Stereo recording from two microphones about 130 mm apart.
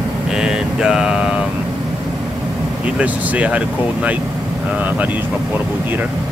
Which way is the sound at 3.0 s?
10° right (ahead or behind).